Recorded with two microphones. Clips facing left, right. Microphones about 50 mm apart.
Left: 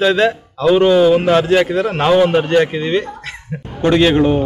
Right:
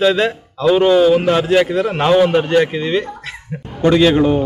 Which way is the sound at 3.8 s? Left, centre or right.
Centre.